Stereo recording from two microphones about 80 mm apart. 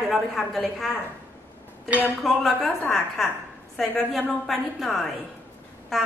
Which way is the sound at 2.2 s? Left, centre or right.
Centre.